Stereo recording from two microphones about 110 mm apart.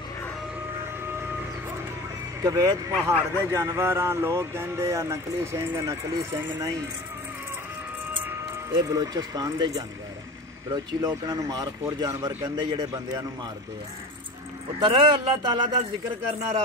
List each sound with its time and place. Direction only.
2.4 s a man's voice: 30° right (ahead or behind)
8.9 s a man's voice: 35° right (ahead or behind)
12.4 s speech: 40° right (ahead or behind)
14.8 s speech: 50° right (ahead or behind)